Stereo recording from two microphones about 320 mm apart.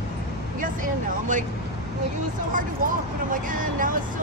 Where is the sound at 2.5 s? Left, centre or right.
Right.